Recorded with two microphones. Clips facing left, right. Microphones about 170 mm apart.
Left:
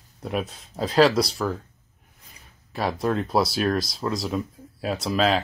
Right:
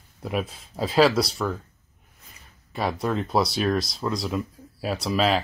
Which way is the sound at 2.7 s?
Centre (ahead or behind).